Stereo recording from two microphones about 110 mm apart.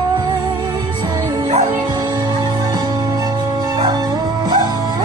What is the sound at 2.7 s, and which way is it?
Music, 40° right (ahead or behind).